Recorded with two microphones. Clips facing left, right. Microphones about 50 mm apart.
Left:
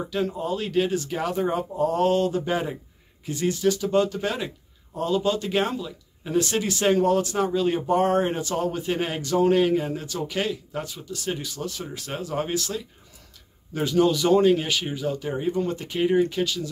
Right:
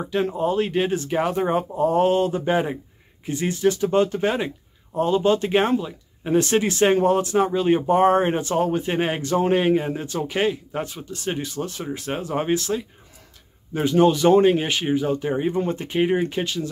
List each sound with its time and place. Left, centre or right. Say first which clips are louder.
0.1 s speech: right 6 dB; right